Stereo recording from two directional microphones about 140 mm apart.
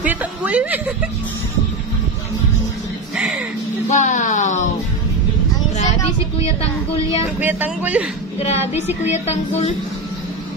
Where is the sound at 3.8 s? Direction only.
60° left (ahead or behind).